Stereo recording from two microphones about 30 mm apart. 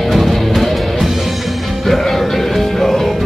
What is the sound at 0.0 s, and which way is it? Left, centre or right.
Music, centre.